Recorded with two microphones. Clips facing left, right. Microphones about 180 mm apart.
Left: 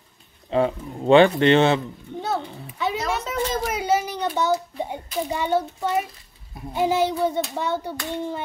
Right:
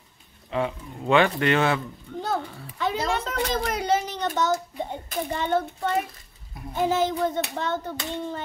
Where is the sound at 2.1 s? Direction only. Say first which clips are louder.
Left 1 dB; 20° left (ahead or behind).